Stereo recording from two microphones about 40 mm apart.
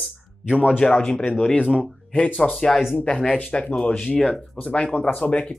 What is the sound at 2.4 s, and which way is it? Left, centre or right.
Speech, centre.